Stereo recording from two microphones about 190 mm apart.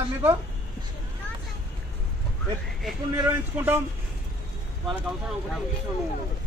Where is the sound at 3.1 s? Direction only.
10° right (ahead or behind).